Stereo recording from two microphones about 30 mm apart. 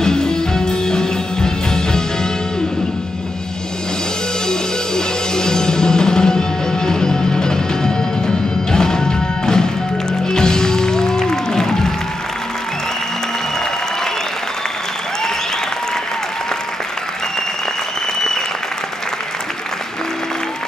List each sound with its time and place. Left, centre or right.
0.0 s music: left
4.5 s music: left